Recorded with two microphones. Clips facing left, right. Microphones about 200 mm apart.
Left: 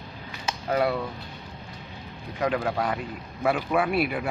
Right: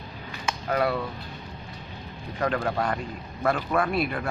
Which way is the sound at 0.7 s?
20° left (ahead or behind).